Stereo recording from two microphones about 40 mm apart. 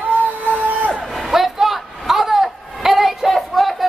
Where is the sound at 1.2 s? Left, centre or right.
Centre.